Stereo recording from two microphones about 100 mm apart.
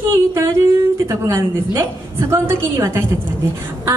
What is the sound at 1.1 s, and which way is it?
A woman's voice, 30° right (ahead or behind).